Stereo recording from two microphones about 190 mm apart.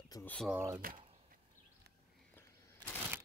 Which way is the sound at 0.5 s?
15° right (ahead or behind).